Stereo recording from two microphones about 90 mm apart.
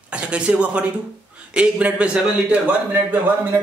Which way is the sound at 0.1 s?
15° right (ahead or behind).